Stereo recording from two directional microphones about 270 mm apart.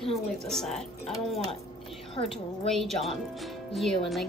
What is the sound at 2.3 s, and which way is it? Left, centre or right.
A woman's voice, centre.